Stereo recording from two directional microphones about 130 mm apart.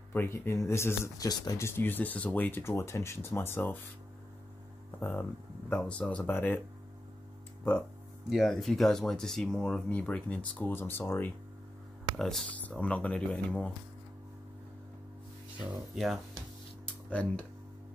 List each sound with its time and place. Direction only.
0.1 s speech: 20° left (ahead or behind)
1.6 s speech: 15° left (ahead or behind)
5.7 s speech: 10° left (ahead or behind)
8.3 s speech: centre (ahead or behind); by 11.3 s 15° left (ahead or behind)
12.2 s speech: centre (ahead or behind)
15.7 s speech: centre (ahead or behind)
16.8 s music: 10° left (ahead or behind)